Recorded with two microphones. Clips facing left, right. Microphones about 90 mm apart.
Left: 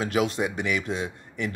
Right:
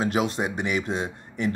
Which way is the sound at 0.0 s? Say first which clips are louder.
Even; 30° right (ahead or behind).